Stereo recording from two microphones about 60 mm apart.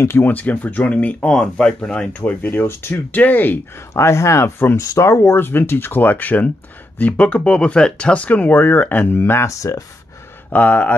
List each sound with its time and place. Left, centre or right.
0.2 s speech: left
2.1 s speech: left
2.6 s speech: left
3.7 s speech: left
4.7 s speech: left
9.5 s speech: left
10.5 s speech: left